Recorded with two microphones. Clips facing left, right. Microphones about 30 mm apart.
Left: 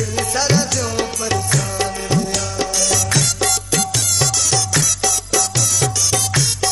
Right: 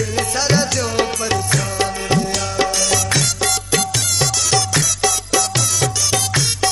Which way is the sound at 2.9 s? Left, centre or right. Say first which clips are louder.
Right 1 dB; centre.